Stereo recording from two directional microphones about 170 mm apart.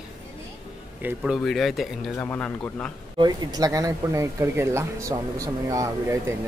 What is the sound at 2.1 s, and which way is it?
Speech, 15° left (ahead or behind).